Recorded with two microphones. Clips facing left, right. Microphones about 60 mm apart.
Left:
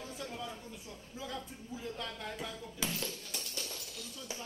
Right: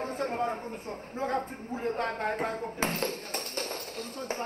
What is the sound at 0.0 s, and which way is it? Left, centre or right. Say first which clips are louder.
A man's voice: right 12 dB; right.